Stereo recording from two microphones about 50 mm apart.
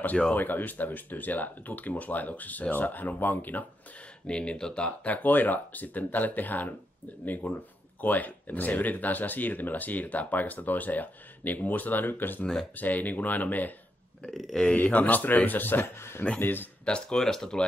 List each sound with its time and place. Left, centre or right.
0.3 s speech: left
4.3 s speech: centre; by 6.7 s left
8.0 s speech: left
14.2 s speech: centre
14.7 s speech: left
16.8 s speech: centre